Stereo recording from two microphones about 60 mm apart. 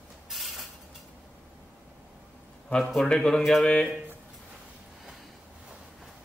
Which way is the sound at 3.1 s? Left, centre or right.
Centre.